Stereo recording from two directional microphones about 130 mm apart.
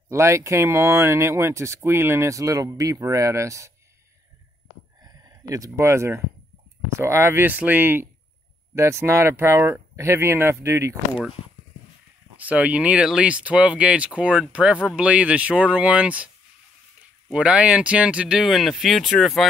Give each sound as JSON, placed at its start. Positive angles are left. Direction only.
{"t": 0.1, "sound": "speech", "side_deg": -20}
{"t": 5.0, "sound": "speech", "side_deg": -30}
{"t": 12.4, "sound": "speech", "side_deg": -10}
{"t": 17.3, "sound": "speech", "side_deg": -10}